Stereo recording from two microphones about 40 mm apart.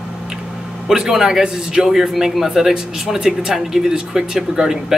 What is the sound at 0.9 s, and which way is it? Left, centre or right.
Speech, centre.